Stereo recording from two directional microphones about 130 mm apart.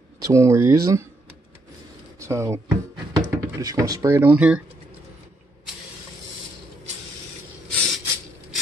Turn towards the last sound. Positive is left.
turn(degrees=0)  # may be behind; listen again after turning